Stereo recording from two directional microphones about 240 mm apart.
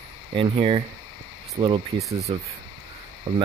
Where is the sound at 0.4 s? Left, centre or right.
Right.